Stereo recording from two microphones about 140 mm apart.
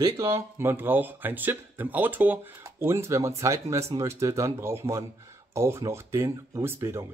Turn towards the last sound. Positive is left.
turn(degrees=-20)  # may be behind; listen again after turning